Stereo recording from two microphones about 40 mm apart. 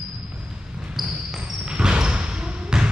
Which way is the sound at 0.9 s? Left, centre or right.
Centre.